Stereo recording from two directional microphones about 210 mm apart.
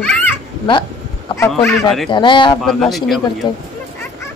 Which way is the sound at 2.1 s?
20° left (ahead or behind).